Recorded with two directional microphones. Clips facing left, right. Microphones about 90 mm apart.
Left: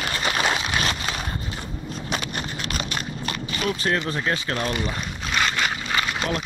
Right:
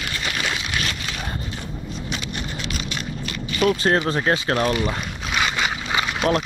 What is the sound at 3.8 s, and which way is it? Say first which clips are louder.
Speech: right 5 dB; 40° right (ahead or behind).